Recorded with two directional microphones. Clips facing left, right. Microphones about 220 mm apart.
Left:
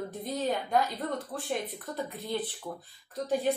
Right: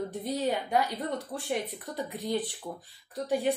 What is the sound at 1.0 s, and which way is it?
A woman's voice, 15° right (ahead or behind).